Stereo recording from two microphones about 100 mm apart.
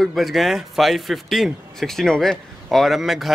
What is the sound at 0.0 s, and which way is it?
A man's voice, centre (ahead or behind).